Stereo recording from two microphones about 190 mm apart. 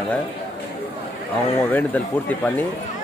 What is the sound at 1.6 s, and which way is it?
Speech, 10° left (ahead or behind).